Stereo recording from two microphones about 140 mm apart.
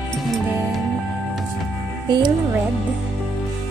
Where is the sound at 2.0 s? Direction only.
30° right (ahead or behind).